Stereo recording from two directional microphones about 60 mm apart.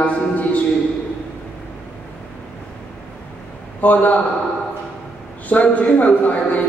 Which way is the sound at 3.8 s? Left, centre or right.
Left.